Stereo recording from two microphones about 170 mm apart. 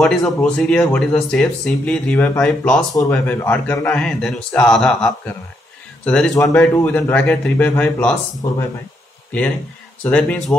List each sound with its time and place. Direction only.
0.0 s speech: 5° left (ahead or behind)
8.4 s speech: 20° left (ahead or behind)
10.0 s speech: 5° left (ahead or behind)